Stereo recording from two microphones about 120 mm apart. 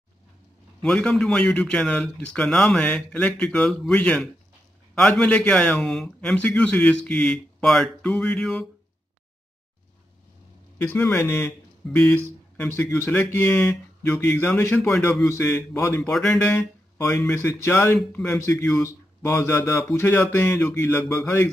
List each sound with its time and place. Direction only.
0.8 s a man's voice: 5° left (ahead or behind)
10.8 s a man's voice: 15° left (ahead or behind)
16.0 s a man's voice: 5° left (ahead or behind)
17.3 s speech: 20° left (ahead or behind)
17.9 s a man's voice: 10° left (ahead or behind)
18.8 s speech: 20° left (ahead or behind)